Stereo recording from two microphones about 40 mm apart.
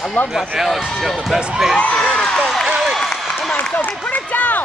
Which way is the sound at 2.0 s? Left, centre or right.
Centre.